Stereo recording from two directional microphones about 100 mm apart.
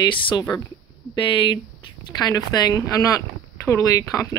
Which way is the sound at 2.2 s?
40° left (ahead or behind).